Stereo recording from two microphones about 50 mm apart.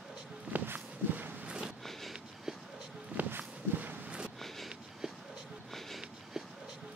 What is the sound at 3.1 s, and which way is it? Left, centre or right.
Walk, right.